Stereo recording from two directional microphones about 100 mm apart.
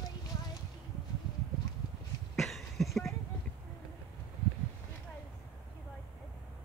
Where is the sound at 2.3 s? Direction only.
Centre (ahead or behind).